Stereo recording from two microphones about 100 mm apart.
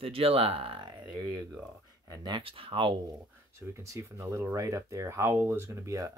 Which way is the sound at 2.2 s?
55° right (ahead or behind).